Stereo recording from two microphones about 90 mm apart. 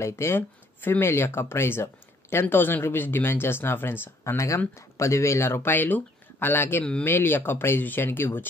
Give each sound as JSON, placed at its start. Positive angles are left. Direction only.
{"t": 0.0, "sound": "speech", "side_deg": 30}
{"t": 6.8, "sound": "speech", "side_deg": 10}
{"t": 7.1, "sound": "speech", "side_deg": 25}